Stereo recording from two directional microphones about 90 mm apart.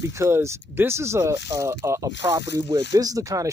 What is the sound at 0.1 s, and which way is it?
Speech, 30° right (ahead or behind).